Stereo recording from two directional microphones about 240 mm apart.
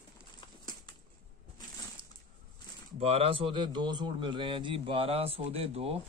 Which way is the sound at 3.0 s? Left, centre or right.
Right.